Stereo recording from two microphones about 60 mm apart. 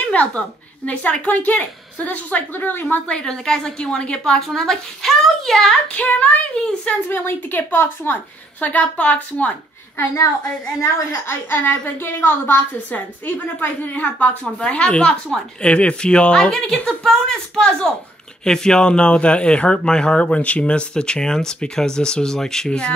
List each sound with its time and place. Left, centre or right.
0.0 s a sound: left
0.8 s a woman's voice: left
3.1 s speech: centre
5.9 s a woman's voice: left
7.1 s a woman's voice: left
9.9 s a woman's voice: left
11.2 s a woman's voice: left; by 22.9 s centre